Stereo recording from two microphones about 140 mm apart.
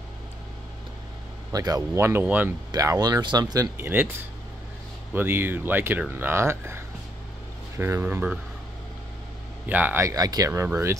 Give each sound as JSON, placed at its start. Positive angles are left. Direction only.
{"t": 1.5, "sound": "speech", "side_deg": -25}
{"t": 2.7, "sound": "speech", "side_deg": -25}
{"t": 3.7, "sound": "speech", "side_deg": -15}
{"t": 5.1, "sound": "speech", "side_deg": -15}
{"t": 9.7, "sound": "speech", "side_deg": -15}